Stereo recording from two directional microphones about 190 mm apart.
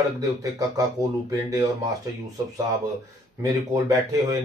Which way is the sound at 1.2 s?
20° right (ahead or behind).